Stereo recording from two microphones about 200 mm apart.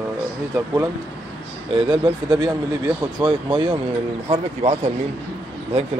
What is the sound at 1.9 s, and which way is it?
Speech, 20° right (ahead or behind).